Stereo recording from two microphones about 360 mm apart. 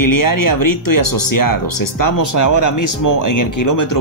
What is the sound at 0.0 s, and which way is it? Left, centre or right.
Speech, left.